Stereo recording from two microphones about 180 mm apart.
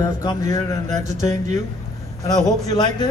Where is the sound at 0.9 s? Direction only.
40° right (ahead or behind).